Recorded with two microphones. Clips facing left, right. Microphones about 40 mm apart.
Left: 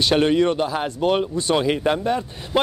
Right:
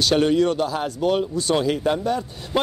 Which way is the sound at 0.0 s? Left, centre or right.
Left.